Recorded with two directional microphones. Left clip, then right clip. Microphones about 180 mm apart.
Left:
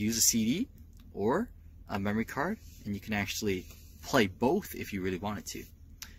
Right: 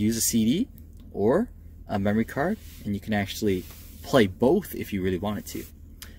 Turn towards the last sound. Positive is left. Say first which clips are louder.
# right 6 dB
turn(degrees=-15)  # may be behind; listen again after turning